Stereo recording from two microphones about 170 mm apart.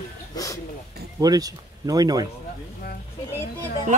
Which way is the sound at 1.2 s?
20° right (ahead or behind).